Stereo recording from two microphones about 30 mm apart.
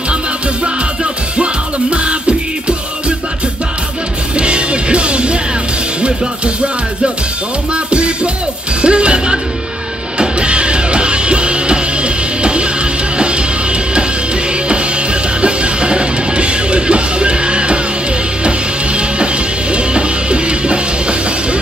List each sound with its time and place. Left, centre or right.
1.4 s music: right
4.4 s music: right
7.7 s music: right
15.4 s music: right
19.7 s music: right